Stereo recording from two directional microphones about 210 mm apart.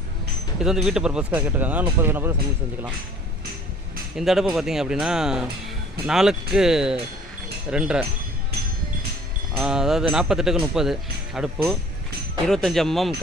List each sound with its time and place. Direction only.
0.6 s speech: 5° right (ahead or behind)
4.2 s speech: centre (ahead or behind)
9.6 s speech: centre (ahead or behind)